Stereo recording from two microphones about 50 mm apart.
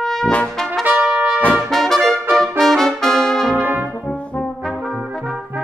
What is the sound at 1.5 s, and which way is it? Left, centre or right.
Trumpet, centre.